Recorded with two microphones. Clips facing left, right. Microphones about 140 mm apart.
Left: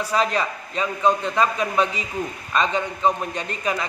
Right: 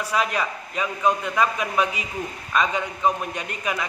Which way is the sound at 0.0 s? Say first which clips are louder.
Left 2 dB; 30° left (ahead or behind).